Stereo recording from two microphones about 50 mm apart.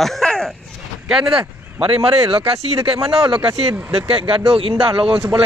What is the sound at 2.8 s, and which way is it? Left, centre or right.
Speech, right.